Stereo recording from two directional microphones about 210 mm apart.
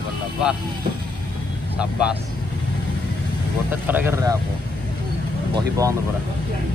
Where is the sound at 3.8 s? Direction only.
10° right (ahead or behind).